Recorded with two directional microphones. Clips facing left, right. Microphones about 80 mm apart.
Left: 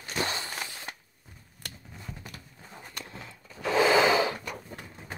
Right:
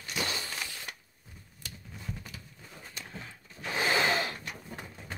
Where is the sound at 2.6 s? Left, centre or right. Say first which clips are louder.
Left 5 dB; left.